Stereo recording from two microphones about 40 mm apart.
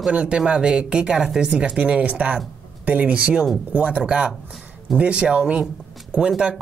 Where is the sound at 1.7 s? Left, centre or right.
Right.